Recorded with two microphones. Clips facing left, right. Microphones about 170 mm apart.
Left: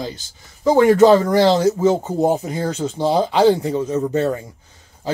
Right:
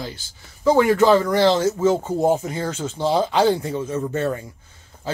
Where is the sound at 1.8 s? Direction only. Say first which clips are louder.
Left 2 dB; 15° left (ahead or behind).